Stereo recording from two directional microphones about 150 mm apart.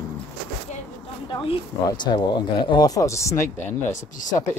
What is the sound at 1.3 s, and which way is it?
Speech, 35° left (ahead or behind).